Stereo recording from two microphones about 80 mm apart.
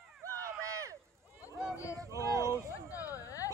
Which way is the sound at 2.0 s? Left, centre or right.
Right.